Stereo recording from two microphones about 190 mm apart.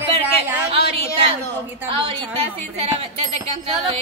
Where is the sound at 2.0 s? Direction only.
30° right (ahead or behind).